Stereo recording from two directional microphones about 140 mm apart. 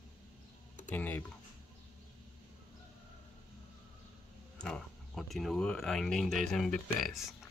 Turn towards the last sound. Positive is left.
turn(degrees=0)  # may be behind; listen again after turning